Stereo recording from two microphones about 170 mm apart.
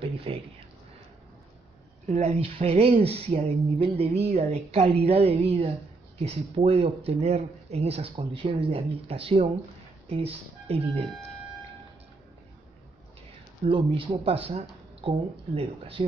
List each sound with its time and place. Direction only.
0.0 s speech: 35° right (ahead or behind)
2.0 s speech: 40° right (ahead or behind)
13.7 s speech: 30° right (ahead or behind)